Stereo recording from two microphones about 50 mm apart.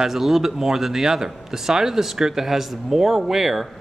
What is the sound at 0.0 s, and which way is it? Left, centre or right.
Speech, centre.